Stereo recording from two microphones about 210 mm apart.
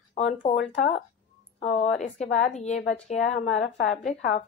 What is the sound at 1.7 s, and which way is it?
Speech, 35° left (ahead or behind).